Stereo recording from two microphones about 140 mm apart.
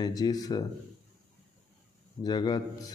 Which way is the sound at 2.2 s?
30° left (ahead or behind).